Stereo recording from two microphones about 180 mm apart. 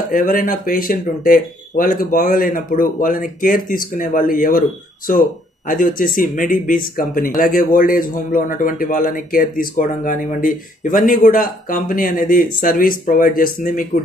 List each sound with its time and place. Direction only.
0.1 s speech: 50° left (ahead or behind)